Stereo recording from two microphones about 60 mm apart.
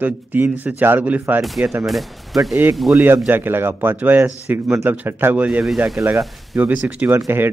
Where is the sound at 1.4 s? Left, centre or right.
Centre.